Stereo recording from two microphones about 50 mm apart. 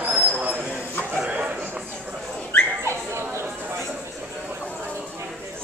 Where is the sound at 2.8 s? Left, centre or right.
Right.